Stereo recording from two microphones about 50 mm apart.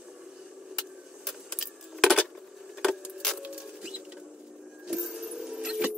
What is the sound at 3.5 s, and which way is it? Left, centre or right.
Bird, centre.